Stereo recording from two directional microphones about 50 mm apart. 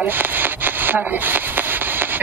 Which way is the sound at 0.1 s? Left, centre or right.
Right.